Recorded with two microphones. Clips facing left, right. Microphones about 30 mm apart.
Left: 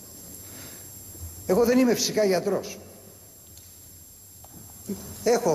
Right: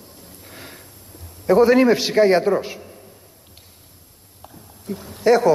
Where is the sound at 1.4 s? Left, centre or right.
Right.